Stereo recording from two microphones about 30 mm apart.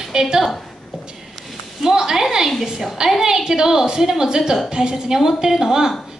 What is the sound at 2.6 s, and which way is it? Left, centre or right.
A woman's voice, centre.